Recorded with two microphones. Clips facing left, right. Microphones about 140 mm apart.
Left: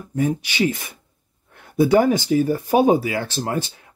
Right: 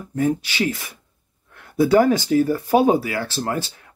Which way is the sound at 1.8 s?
20° left (ahead or behind).